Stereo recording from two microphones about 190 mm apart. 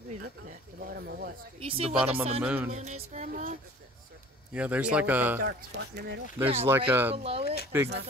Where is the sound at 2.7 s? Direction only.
35° right (ahead or behind).